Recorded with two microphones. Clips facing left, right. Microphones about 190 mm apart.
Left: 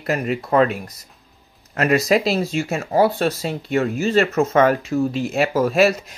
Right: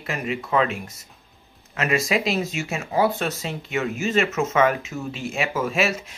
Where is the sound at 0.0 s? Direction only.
40° left (ahead or behind).